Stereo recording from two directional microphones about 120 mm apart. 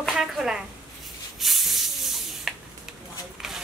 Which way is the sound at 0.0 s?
Centre (ahead or behind).